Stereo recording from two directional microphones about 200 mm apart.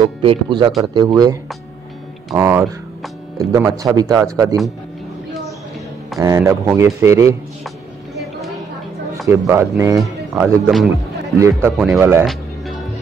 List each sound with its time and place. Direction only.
0.0 s speech: 25° right (ahead or behind)
6.1 s speech: 15° right (ahead or behind)
9.3 s speech: 10° right (ahead or behind)